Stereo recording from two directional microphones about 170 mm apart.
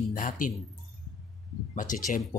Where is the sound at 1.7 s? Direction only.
50° left (ahead or behind).